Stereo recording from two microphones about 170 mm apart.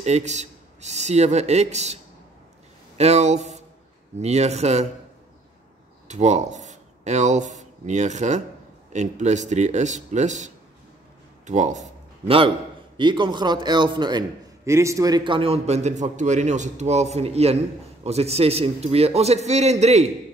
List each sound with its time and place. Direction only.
0.0 s a man's voice: 40° right (ahead or behind)
3.0 s a man's voice: 40° right (ahead or behind)
6.0 s a man's voice: 40° right (ahead or behind)